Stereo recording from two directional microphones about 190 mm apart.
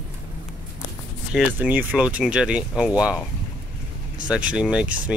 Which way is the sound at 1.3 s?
10° right (ahead or behind).